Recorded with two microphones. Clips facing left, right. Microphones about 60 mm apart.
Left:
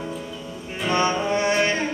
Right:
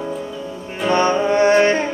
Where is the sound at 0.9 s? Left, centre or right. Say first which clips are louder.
Right 6 dB; right.